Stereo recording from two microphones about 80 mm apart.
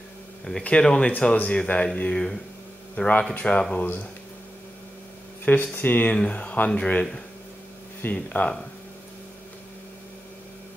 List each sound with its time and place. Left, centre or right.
0.5 s speech: centre
5.4 s speech: centre